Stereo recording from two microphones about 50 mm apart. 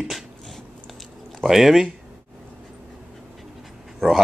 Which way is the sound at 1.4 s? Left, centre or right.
Centre.